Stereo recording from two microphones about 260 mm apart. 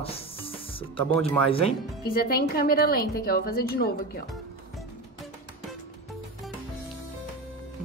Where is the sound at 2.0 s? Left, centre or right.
Left.